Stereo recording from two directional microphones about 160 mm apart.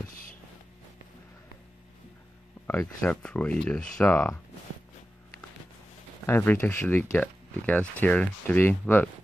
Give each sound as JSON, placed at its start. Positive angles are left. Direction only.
{"t": 0.1, "sound": "a sound", "side_deg": 60}
{"t": 2.6, "sound": "speech", "side_deg": 10}
{"t": 6.2, "sound": "speech", "side_deg": 15}